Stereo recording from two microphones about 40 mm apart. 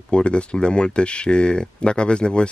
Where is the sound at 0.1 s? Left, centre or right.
Left.